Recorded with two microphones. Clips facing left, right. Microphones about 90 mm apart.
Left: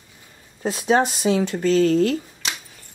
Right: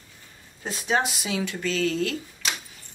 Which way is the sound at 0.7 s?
40° left (ahead or behind).